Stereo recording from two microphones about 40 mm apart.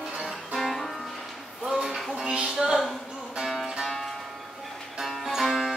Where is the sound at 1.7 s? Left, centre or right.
Centre.